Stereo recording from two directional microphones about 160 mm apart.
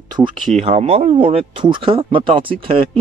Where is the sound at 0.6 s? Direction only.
40° right (ahead or behind).